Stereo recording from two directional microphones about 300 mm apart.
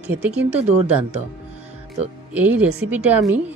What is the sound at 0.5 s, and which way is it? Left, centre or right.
Speech, right.